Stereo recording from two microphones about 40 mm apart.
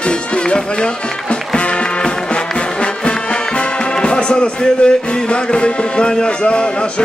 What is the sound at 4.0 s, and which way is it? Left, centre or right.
Speech, left.